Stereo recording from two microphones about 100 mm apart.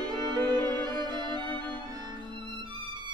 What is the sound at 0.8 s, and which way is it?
Music, 50° right (ahead or behind).